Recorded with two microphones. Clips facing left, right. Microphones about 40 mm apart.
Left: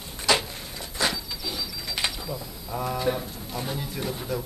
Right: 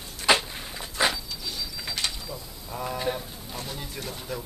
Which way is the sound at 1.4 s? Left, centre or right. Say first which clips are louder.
Left 2 dB; centre.